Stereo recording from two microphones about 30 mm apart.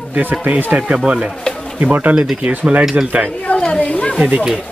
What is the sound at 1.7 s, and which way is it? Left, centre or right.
Speech, right.